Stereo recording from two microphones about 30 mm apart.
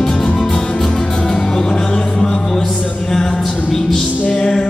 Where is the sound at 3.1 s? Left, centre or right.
Centre.